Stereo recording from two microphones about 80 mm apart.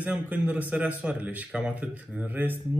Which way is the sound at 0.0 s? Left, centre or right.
Centre.